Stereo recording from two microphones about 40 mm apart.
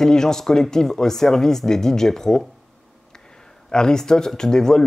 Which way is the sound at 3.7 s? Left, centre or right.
Centre.